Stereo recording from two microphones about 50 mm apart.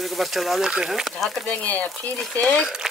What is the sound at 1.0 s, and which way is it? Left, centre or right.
Speech, centre.